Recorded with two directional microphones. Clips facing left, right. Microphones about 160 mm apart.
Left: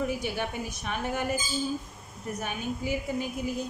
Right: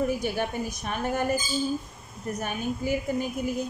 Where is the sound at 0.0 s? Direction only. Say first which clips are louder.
Right 3 dB; 45° right (ahead or behind).